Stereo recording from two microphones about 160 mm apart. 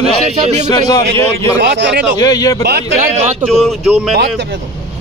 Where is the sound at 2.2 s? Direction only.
20° left (ahead or behind).